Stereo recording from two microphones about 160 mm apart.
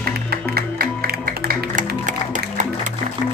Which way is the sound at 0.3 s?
75° right (ahead or behind).